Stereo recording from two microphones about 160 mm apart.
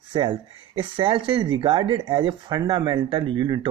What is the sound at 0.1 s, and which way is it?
Speech, 30° right (ahead or behind).